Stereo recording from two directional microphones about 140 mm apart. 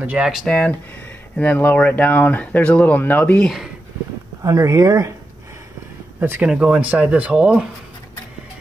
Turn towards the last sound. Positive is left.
turn(degrees=-10)  # may be behind; listen again after turning